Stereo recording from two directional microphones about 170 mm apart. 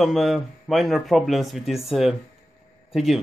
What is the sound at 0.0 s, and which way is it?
A man's voice, centre (ahead or behind).